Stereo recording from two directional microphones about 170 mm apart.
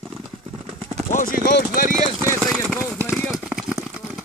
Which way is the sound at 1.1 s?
50° left (ahead or behind).